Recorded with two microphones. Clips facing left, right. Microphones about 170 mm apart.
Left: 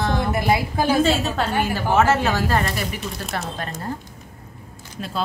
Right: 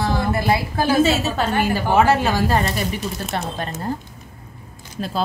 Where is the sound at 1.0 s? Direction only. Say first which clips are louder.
Right 1 dB; 5° right (ahead or behind).